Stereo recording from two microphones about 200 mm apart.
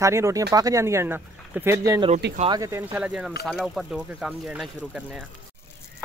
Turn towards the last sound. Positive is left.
turn(degrees=0)  # may be behind; listen again after turning